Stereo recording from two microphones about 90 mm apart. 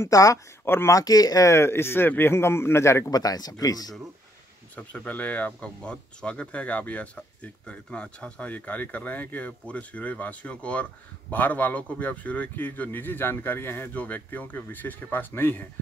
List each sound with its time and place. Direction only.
0.0 s speech: 40° left (ahead or behind)
0.7 s speech: 25° left (ahead or behind)
0.9 s speech: 45° left (ahead or behind)
3.1 s speech: 45° left (ahead or behind)
4.7 s speech: 15° left (ahead or behind)